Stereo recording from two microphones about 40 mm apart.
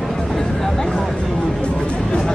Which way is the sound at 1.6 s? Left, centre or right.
Left.